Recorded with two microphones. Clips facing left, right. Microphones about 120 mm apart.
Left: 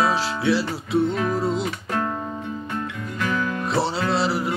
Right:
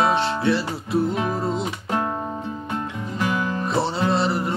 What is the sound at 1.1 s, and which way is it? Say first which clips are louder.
Music: left 1 dB; 25° right (ahead or behind).